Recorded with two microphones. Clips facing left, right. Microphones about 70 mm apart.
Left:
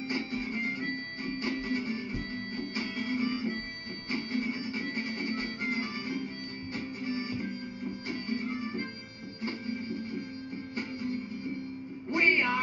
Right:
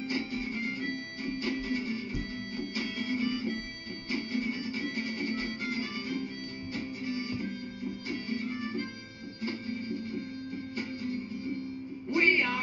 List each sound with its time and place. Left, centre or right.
0.1 s music: left
12.1 s music: left